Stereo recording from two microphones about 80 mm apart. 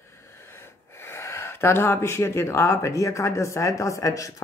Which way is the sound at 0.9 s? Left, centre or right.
Left.